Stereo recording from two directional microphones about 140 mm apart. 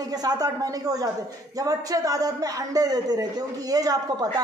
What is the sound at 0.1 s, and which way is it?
A woman's voice, 25° right (ahead or behind).